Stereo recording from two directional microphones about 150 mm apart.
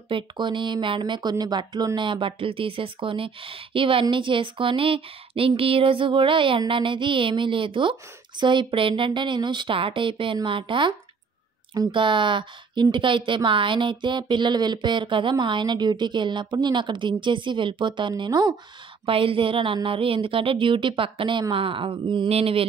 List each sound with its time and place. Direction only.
0.1 s a woman's voice: 30° right (ahead or behind)